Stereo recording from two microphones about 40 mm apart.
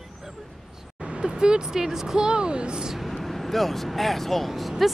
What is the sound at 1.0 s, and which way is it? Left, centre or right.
Speech, right.